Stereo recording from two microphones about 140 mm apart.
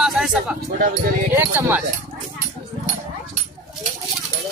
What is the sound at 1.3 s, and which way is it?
Speech, 15° right (ahead or behind).